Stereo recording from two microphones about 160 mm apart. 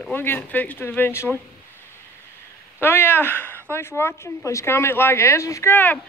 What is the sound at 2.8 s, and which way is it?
Speech, 15° left (ahead or behind).